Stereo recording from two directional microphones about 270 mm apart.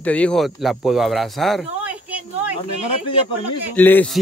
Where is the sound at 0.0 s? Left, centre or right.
Centre.